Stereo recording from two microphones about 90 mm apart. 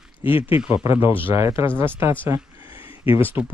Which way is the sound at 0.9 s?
25° right (ahead or behind).